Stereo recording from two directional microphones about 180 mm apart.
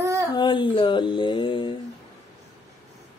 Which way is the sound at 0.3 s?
25° left (ahead or behind).